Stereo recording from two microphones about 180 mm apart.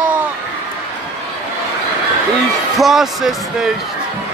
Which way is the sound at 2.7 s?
Centre (ahead or behind).